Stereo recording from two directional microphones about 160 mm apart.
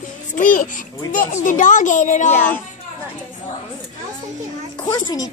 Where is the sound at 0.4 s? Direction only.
55° left (ahead or behind).